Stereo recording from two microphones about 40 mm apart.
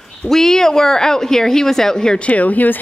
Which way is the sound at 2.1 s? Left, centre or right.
Left.